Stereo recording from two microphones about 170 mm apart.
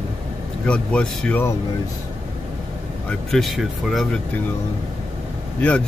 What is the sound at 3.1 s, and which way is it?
Speech, centre (ahead or behind).